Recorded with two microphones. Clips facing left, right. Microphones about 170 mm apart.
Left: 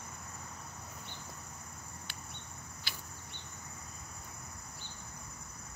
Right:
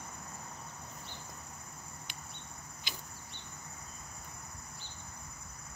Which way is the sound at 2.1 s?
15° right (ahead or behind).